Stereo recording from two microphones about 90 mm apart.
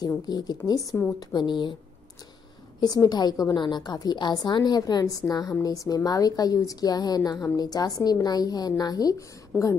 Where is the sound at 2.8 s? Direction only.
45° left (ahead or behind).